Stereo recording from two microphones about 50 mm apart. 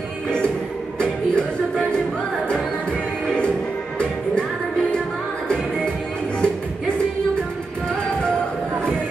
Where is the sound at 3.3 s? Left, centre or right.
Centre.